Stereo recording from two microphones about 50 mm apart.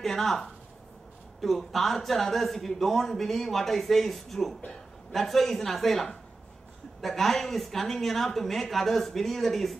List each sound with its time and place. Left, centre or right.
0.0 s a man's voice: centre